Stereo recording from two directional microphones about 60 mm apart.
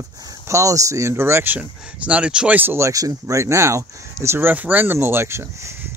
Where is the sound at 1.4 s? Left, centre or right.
Right.